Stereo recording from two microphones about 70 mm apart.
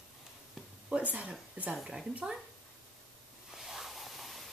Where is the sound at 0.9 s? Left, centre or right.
Centre.